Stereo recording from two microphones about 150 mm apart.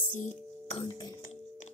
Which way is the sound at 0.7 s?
30° left (ahead or behind).